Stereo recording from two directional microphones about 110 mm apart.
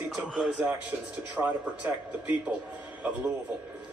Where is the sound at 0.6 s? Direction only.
15° right (ahead or behind).